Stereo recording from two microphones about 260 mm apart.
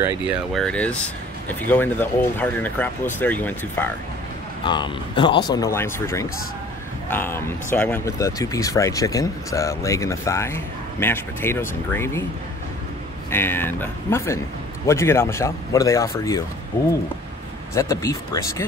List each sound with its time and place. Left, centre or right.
0.0 s speech: centre
4.6 s speech: centre
13.3 s speech: centre
17.7 s speech: centre